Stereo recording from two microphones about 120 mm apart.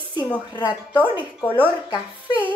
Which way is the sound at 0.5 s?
40° left (ahead or behind).